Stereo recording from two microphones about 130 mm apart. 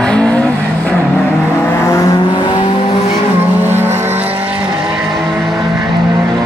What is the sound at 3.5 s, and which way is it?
Vehicle, 15° right (ahead or behind).